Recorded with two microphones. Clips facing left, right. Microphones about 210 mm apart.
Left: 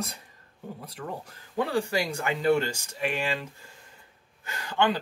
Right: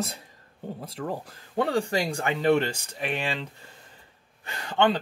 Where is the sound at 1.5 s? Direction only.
30° right (ahead or behind).